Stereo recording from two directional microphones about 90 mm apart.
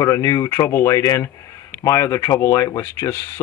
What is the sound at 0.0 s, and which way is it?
Speech, 40° left (ahead or behind).